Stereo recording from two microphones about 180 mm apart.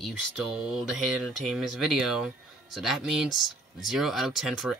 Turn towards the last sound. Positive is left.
turn(degrees=0)  # may be behind; listen again after turning